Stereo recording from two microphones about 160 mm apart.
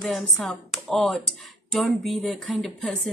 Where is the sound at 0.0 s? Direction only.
Centre (ahead or behind).